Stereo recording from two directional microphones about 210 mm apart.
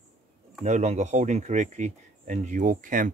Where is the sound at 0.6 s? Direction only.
35° right (ahead or behind).